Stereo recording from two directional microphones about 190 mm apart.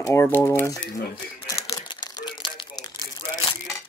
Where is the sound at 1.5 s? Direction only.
20° left (ahead or behind).